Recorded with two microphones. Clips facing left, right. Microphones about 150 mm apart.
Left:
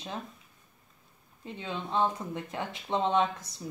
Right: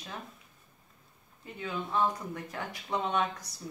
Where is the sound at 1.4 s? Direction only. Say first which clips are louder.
Even; 25° left (ahead or behind).